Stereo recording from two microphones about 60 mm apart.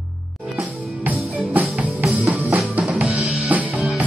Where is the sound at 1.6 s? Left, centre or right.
Right.